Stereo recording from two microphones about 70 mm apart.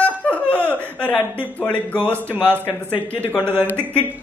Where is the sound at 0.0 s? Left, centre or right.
Left.